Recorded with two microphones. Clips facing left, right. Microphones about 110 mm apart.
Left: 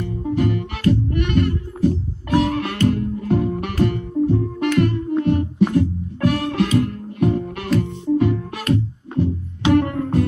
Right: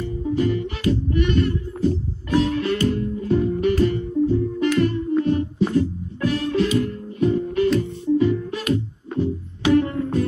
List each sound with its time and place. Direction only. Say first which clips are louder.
0.0 s music: left 1 dB; 55° left (ahead or behind)
9.7 s music: left 1 dB; 60° left (ahead or behind)